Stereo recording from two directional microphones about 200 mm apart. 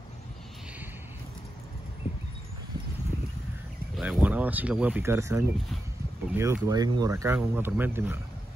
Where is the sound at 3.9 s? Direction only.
5° right (ahead or behind).